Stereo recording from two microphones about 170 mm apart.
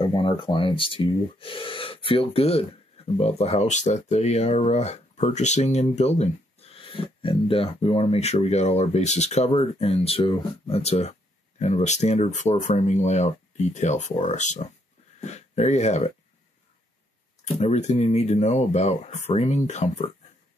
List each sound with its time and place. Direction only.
0.0 s speech: 30° left (ahead or behind)
17.6 s speech: 40° left (ahead or behind)